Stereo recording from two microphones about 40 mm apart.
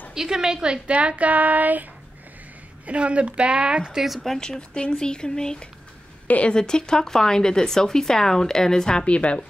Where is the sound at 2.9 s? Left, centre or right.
Right.